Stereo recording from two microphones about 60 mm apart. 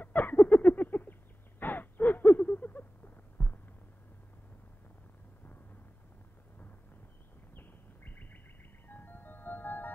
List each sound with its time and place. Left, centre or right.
0.0 s a sound: left
1.6 s gasp: left
3.4 s heart sounds: left
7.5 s bird: left
8.8 s music: left